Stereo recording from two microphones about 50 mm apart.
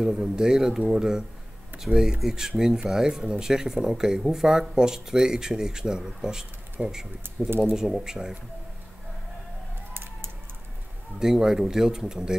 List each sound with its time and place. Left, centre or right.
0.0 s speech: centre
7.2 s speech: right
7.9 s speech: centre
11.1 s speech: centre